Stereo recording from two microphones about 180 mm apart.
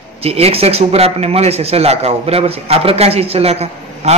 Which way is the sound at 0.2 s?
35° right (ahead or behind).